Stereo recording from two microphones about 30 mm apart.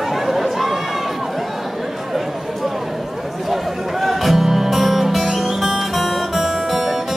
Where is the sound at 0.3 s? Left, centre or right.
Centre.